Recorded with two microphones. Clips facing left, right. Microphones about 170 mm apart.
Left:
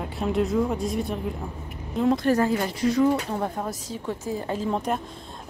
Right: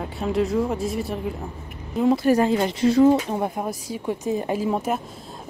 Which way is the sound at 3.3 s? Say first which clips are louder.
Right 3 dB; 15° right (ahead or behind).